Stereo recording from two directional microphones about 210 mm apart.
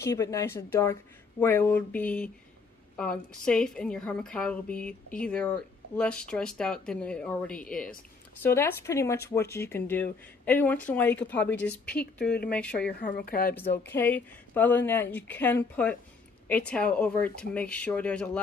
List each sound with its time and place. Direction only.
0.0 s a woman's voice: 15° left (ahead or behind)
13.2 s speech: 45° left (ahead or behind)
13.8 s speech: 10° left (ahead or behind)